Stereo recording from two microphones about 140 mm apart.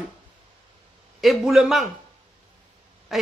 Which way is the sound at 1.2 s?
Centre (ahead or behind).